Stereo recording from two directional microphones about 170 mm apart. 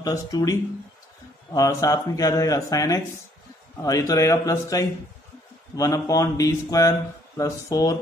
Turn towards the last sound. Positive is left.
turn(degrees=20)  # may be behind; listen again after turning